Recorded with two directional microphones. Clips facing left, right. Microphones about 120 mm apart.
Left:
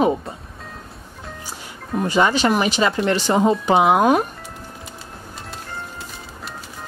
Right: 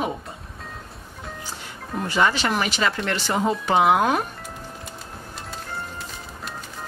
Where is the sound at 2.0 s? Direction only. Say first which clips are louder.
Left 4 dB; 15° left (ahead or behind).